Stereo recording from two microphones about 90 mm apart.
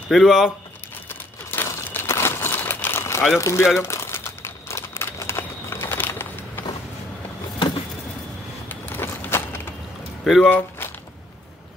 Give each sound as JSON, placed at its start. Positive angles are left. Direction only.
{"t": 0.1, "sound": "speech", "side_deg": 0}
{"t": 1.0, "sound": "crumpling", "side_deg": 20}
{"t": 3.3, "sound": "speech", "side_deg": 30}
{"t": 3.8, "sound": "crumpling", "side_deg": 30}
{"t": 7.5, "sound": "a sound", "side_deg": 65}
{"t": 8.6, "sound": "a sound", "side_deg": 20}
{"t": 10.2, "sound": "speech", "side_deg": 0}